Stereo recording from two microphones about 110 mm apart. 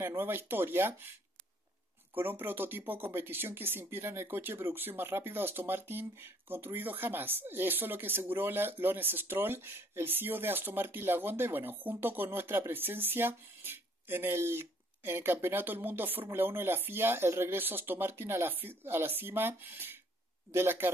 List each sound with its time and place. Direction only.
0.0 s speech: 20° right (ahead or behind)
2.1 s speech: 20° right (ahead or behind)